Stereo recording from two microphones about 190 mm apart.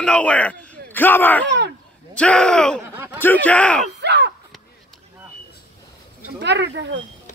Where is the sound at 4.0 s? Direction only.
65° right (ahead or behind).